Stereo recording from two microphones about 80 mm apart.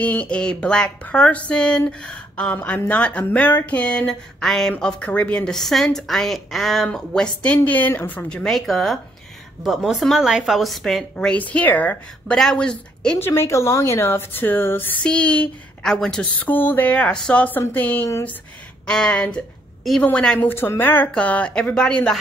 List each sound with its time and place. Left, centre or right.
0.0 s speech: centre
8.3 s speech: centre
11.3 s speech: centre
12.4 s speech: centre
13.2 s speech: left
15.0 s a woman's voice: centre
16.3 s speech: left
18.9 s speech: centre
20.3 s speech: left; by 22.1 s centre